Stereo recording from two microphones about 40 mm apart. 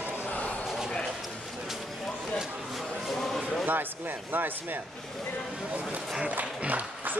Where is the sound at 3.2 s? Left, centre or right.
Centre.